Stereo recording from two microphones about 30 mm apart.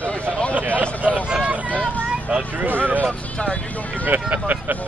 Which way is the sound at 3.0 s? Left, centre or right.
Left.